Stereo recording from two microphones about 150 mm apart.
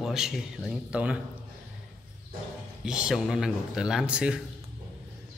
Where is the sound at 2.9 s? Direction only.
5° right (ahead or behind).